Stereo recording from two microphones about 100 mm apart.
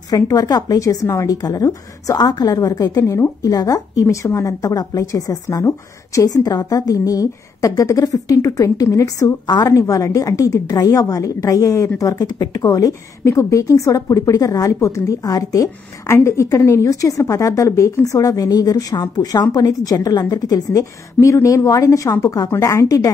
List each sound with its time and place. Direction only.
0.1 s a woman's voice: 35° left (ahead or behind)